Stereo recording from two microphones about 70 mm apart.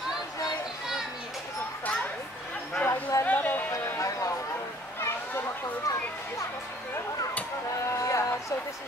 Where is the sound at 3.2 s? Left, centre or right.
Left.